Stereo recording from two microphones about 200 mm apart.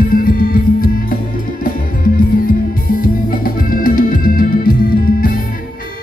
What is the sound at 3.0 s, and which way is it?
Music, 45° left (ahead or behind).